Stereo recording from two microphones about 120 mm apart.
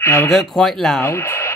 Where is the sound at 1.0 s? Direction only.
20° left (ahead or behind).